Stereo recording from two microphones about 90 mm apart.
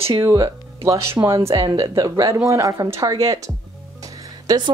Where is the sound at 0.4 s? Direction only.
35° right (ahead or behind).